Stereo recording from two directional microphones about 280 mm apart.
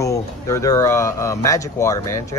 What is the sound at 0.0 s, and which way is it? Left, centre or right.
Speech, centre.